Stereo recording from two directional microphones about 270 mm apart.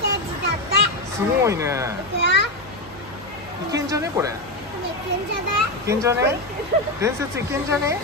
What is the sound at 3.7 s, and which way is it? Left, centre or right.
Speech, centre.